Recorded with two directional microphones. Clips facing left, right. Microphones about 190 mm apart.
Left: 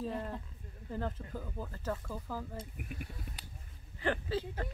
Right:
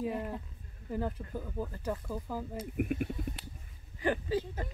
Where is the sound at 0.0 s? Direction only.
10° right (ahead or behind).